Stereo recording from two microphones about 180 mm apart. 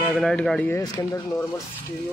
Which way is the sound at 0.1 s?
5° left (ahead or behind).